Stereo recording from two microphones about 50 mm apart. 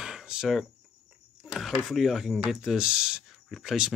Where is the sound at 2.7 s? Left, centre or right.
Centre.